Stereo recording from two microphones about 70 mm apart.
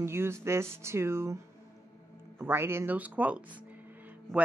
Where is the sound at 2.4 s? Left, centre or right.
Right.